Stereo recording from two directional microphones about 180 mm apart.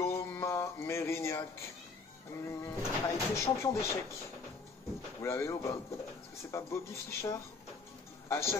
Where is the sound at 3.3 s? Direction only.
15° left (ahead or behind).